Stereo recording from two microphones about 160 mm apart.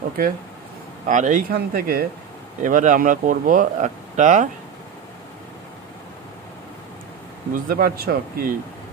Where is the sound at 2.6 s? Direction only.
55° right (ahead or behind).